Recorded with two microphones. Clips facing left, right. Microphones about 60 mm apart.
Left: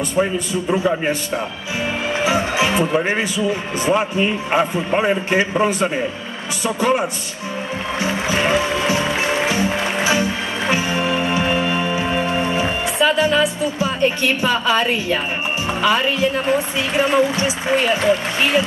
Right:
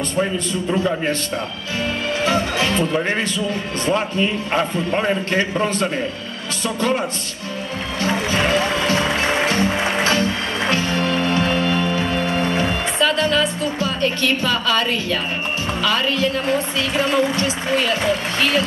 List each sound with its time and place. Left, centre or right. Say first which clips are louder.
0.1 s speech: left 3 dB; centre
8.0 s music: right 1 dB; centre
15.8 s speech: left 3 dB; centre